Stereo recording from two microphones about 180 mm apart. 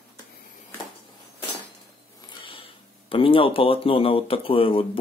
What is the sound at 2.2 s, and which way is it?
Speech, 30° left (ahead or behind).